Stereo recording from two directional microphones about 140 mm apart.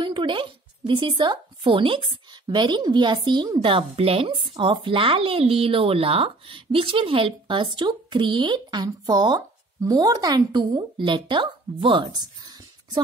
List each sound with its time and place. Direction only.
0.0 s a woman's voice: 35° right (ahead or behind)